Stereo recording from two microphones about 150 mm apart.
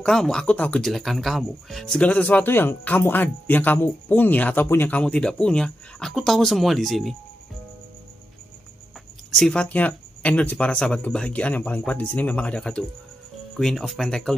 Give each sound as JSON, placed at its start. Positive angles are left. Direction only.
{"t": 0.0, "sound": "speech", "side_deg": 5}
{"t": 9.3, "sound": "speech", "side_deg": 5}